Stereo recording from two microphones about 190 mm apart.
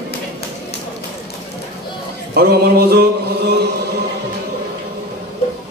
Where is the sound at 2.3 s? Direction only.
55° right (ahead or behind).